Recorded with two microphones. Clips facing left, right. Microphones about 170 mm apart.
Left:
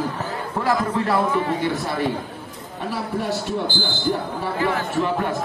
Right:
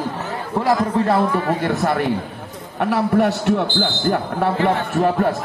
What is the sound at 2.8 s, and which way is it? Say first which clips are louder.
Speech: right 8 dB; 65° right (ahead or behind).